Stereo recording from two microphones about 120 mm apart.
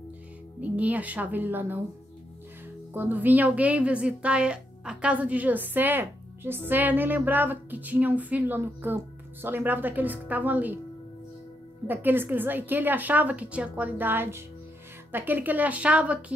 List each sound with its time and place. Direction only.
0.6 s a woman's voice: 10° right (ahead or behind)
2.9 s a woman's voice: 15° right (ahead or behind)
11.9 s a woman's voice: 15° right (ahead or behind)